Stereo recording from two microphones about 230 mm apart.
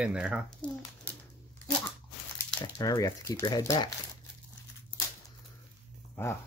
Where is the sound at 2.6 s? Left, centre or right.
Centre.